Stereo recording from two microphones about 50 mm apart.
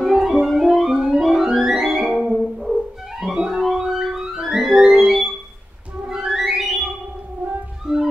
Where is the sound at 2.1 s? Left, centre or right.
Centre.